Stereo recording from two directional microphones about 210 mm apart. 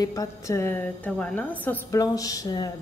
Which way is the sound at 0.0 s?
15° left (ahead or behind).